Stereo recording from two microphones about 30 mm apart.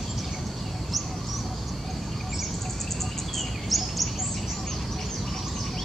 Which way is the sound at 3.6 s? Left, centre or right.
Centre.